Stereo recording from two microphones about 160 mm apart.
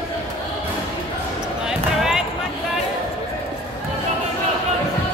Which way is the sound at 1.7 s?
5° right (ahead or behind).